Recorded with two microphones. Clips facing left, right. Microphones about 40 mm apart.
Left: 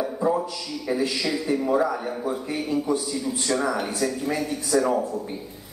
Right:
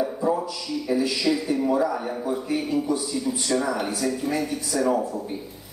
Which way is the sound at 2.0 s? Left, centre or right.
Centre.